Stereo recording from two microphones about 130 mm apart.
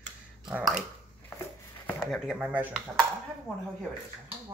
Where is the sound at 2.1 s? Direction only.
5° right (ahead or behind).